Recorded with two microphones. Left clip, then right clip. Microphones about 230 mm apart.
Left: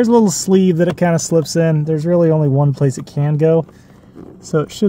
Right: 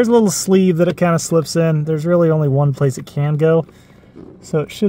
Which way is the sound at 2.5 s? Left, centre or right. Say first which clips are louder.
Even; right.